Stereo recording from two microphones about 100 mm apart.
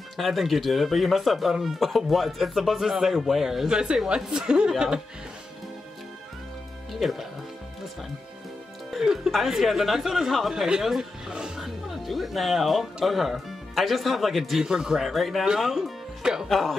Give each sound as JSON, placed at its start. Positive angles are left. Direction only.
{"t": 0.2, "sound": "speech", "side_deg": 0}
{"t": 6.9, "sound": "speech", "side_deg": 0}
{"t": 8.9, "sound": "speech", "side_deg": -5}